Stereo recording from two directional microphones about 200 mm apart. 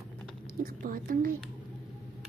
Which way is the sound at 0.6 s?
45° right (ahead or behind).